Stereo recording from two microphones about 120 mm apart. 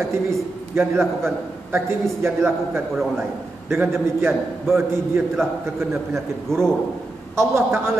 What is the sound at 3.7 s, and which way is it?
A man's voice, 20° right (ahead or behind).